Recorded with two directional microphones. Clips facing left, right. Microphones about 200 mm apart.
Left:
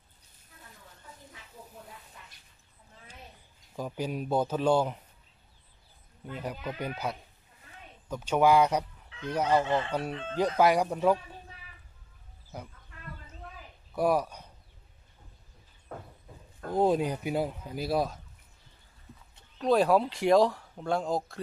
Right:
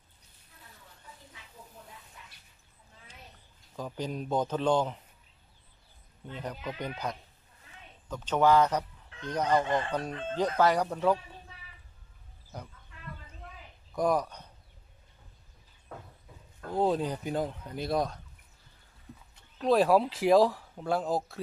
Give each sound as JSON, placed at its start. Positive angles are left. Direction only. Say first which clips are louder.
{"t": 3.7, "sound": "speech", "louder": "left 2 dB", "side_deg": 10}
{"t": 6.2, "sound": "speech", "louder": "left 2 dB", "side_deg": 10}
{"t": 8.1, "sound": "speech", "louder": "left 1 dB", "side_deg": 10}
{"t": 12.5, "sound": "speech", "louder": "left 1 dB", "side_deg": 5}
{"t": 13.9, "sound": "speech", "louder": "left 1 dB", "side_deg": 10}
{"t": 15.9, "sound": "a sound", "louder": "left 3 dB", "side_deg": 50}
{"t": 16.7, "sound": "speech", "louder": "left 2 dB", "side_deg": 15}
{"t": 19.6, "sound": "speech", "louder": "even", "side_deg": 0}